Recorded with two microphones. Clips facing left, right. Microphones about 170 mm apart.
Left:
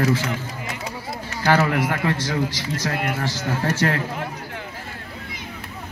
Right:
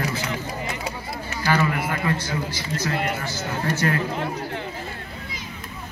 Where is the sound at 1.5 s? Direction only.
85° left.